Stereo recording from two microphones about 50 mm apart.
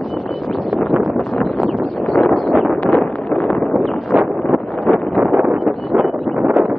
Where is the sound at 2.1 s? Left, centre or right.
Centre.